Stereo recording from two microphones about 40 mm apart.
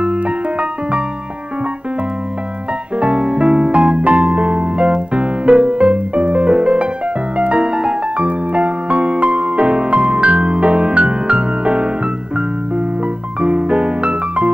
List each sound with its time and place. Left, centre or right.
0.0 s music: right
3.0 s music: right
8.2 s music: right
13.4 s music: right